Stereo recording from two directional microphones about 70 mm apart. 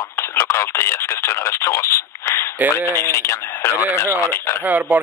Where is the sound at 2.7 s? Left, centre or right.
Left.